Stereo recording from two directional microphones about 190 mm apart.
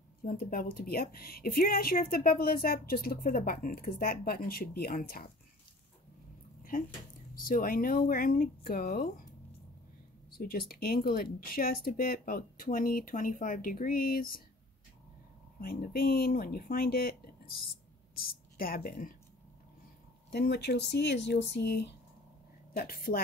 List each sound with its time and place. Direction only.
0.2 s speech: 50° left (ahead or behind)
6.7 s speech: 50° left (ahead or behind)
10.3 s speech: 50° left (ahead or behind)
15.6 s speech: 50° left (ahead or behind)
18.1 s speech: 50° left (ahead or behind)
20.2 s speech: 55° left (ahead or behind)